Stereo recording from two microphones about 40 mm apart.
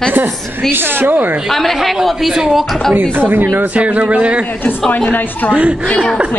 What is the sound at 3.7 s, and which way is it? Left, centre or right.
Speech, right.